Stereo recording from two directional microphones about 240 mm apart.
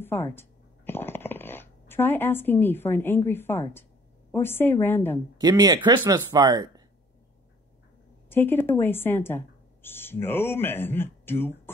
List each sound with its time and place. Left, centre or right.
0.0 s speech: centre
5.4 s speech: centre
8.3 s speech: centre